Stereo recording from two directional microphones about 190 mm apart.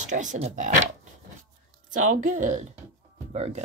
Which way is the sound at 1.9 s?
40° right (ahead or behind).